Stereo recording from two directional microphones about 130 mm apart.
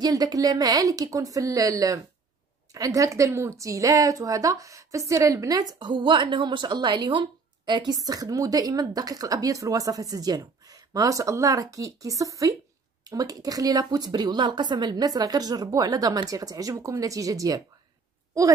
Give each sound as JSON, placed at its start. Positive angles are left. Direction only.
{"t": 0.0, "sound": "a woman's voice", "side_deg": -30}